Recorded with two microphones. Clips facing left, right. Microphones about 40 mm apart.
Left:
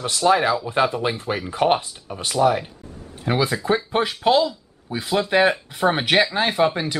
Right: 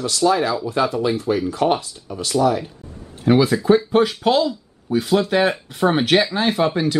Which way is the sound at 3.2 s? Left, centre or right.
Centre.